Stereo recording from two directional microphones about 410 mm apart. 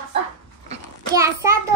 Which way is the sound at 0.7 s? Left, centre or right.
Centre.